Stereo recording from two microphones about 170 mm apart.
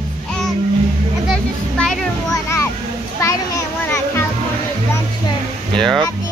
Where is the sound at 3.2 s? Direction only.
15° left (ahead or behind).